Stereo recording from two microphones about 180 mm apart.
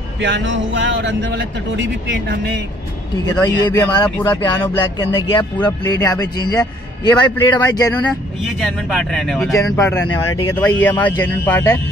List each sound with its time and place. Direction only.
0.2 s a sound: 85° right
3.6 s speech: 25° left (ahead or behind)
5.3 s speech: 25° left (ahead or behind)
7.9 s speech: 10° left (ahead or behind)